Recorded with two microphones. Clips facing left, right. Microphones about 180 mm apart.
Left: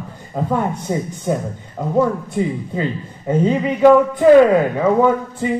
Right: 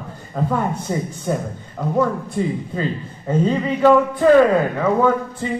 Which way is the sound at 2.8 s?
15° left (ahead or behind).